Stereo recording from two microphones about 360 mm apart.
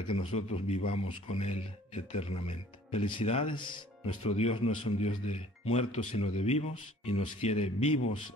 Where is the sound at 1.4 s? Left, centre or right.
Centre.